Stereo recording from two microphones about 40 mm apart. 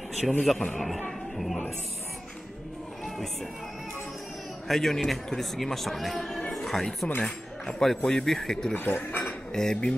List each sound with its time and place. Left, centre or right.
0.2 s speech: centre
4.6 s speech: centre
7.2 s speech: centre
8.7 s speech: left
9.2 s cutlery: centre